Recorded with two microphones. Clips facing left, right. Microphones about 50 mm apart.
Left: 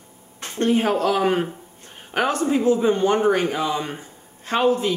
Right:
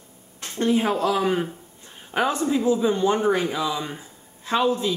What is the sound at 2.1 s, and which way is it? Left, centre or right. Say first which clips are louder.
Speech: left 2 dB; left.